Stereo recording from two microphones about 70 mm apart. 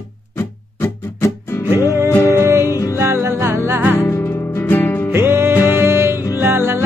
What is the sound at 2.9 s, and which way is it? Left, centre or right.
Music, right.